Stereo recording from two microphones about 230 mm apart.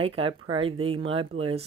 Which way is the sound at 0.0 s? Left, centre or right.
Right.